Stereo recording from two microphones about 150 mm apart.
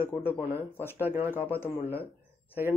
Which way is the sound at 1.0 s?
15° right (ahead or behind).